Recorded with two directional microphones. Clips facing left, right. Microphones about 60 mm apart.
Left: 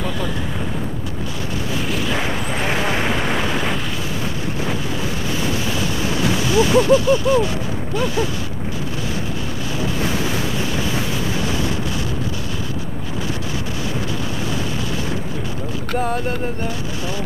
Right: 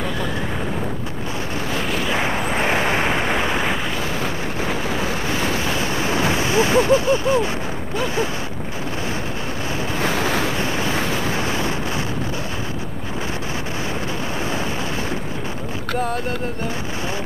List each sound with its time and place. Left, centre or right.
1.9 s a sound: centre
2.1 s vehicle: right
4.6 s waves: right
9.9 s waves: right